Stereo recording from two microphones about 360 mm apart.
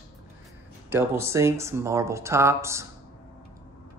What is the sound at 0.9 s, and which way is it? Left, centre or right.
Speech, centre.